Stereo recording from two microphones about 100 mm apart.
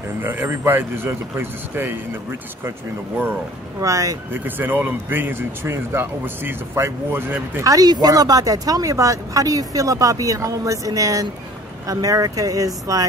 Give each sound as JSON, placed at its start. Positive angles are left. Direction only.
{"t": 0.2, "sound": "speech", "side_deg": -20}
{"t": 3.8, "sound": "speech", "side_deg": -30}
{"t": 4.3, "sound": "speech", "side_deg": -20}
{"t": 7.6, "sound": "speech", "side_deg": -40}